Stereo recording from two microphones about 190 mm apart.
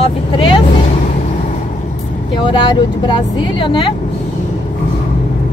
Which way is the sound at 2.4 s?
25° left (ahead or behind).